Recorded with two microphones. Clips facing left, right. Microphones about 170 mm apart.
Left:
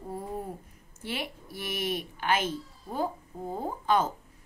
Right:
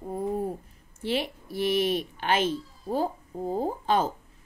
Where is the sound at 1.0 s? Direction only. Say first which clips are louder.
Right 7 dB; 25° right (ahead or behind).